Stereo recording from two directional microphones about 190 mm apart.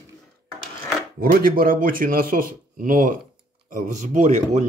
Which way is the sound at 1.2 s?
50° right (ahead or behind).